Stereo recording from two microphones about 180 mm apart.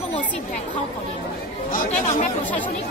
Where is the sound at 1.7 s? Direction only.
50° left (ahead or behind).